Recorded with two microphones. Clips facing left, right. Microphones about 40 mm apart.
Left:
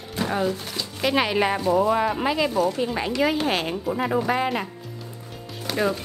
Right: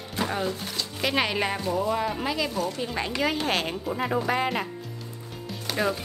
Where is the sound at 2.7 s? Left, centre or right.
Centre.